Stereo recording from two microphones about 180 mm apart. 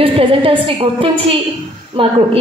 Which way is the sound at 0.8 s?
30° right (ahead or behind).